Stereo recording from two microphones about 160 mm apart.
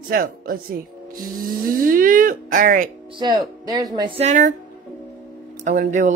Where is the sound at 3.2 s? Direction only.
25° right (ahead or behind).